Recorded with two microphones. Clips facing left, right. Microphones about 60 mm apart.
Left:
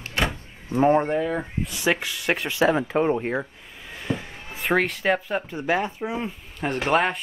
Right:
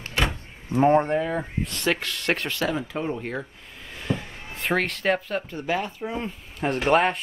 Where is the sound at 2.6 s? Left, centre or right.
Left.